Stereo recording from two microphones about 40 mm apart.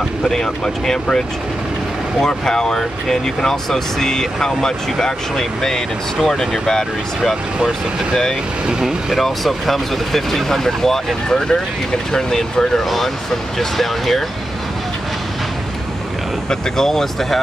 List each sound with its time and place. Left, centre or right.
0.3 s speech: centre
8.6 s speech: centre
9.1 s speech: centre
12.8 s speech: centre
16.4 s speech: centre